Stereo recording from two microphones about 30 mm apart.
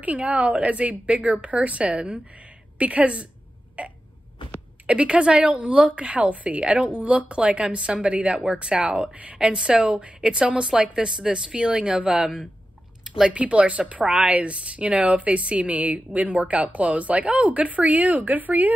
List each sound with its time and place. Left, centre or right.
0.0 s speech: right
3.8 s hiccup: right
4.8 s a woman's voice: right
9.1 s speech: right
9.4 s a woman's voice: right
10.6 s speech: right
13.3 s a woman's voice: right
15.6 s speech: right